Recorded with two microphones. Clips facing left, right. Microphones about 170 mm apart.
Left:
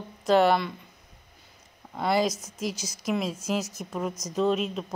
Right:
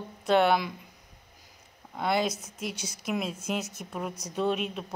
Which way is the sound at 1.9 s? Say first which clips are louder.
Left 3 dB; centre (ahead or behind).